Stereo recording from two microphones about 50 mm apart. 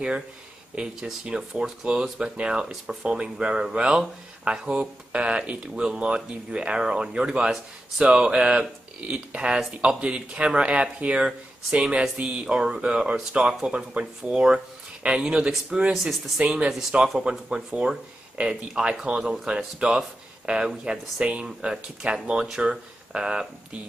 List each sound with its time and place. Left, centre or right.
1.2 s speech: centre